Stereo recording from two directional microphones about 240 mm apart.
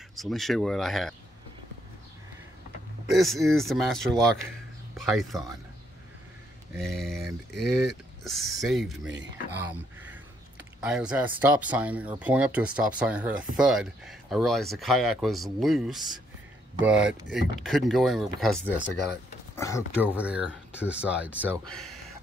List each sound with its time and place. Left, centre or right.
0.1 s speech: centre
3.1 s speech: centre
6.8 s speech: centre
9.0 s speech: right
9.6 s speech: centre
20.2 s speech: centre